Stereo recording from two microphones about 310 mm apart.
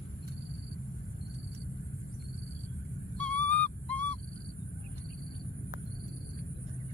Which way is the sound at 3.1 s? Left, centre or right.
Centre.